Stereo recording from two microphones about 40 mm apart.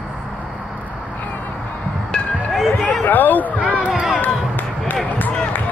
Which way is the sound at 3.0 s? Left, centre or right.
Left.